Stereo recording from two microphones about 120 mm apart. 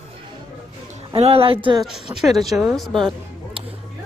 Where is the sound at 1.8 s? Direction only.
Centre (ahead or behind).